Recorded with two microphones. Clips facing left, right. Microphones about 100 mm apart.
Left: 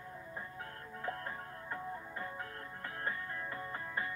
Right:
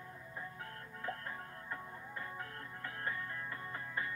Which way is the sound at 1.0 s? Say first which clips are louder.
Left 2 dB; 20° left (ahead or behind).